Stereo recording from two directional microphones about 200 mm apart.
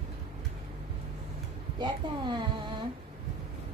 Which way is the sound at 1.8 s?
20° right (ahead or behind).